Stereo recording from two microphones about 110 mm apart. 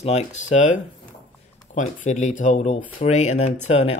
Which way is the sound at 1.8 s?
90° left.